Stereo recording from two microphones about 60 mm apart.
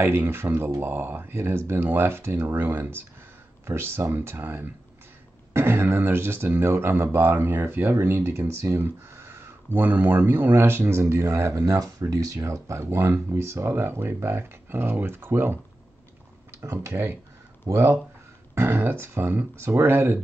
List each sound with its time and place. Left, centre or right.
0.0 s speech: right
12.0 s speech: right
16.6 s speech: right
18.5 s speech: right